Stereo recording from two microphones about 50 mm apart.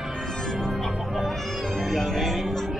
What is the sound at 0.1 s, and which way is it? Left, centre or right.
Music, centre.